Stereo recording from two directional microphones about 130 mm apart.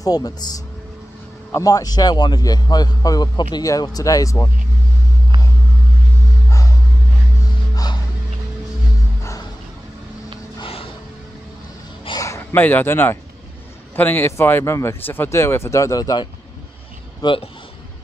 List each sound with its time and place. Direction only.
0.0 s speech: 30° left (ahead or behind)
1.5 s a man's voice: 25° left (ahead or behind)
7.7 s music: 30° left (ahead or behind)
10.6 s a sound: 45° left (ahead or behind)
12.2 s speech: 20° left (ahead or behind)
17.2 s speech: 40° left (ahead or behind)